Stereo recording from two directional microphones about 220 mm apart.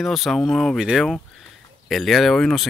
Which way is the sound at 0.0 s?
Centre (ahead or behind).